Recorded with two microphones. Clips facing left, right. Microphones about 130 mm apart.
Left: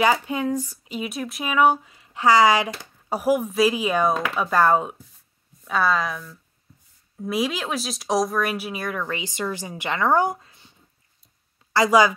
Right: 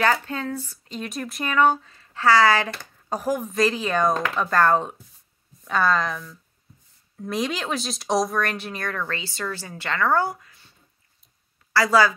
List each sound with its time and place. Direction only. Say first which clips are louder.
0.0 s speech: left 2 dB; 15° left (ahead or behind)
11.7 s a woman's voice: left 2 dB; 20° left (ahead or behind)